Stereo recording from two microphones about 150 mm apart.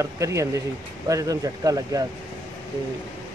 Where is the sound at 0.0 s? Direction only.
20° right (ahead or behind).